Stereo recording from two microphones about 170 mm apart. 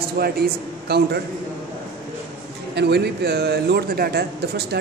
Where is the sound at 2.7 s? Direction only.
75° right (ahead or behind).